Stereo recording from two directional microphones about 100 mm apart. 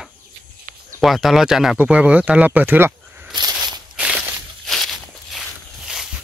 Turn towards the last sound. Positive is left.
turn(degrees=5)  # may be behind; listen again after turning